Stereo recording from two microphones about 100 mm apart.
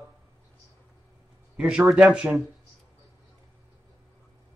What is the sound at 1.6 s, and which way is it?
Speech, 5° right (ahead or behind).